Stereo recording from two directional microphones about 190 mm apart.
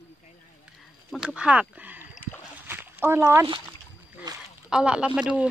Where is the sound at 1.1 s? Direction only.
5° right (ahead or behind).